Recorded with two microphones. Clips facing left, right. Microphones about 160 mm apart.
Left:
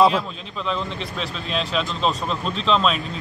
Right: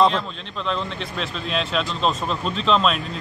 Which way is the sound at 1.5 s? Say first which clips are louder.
Even; centre (ahead or behind).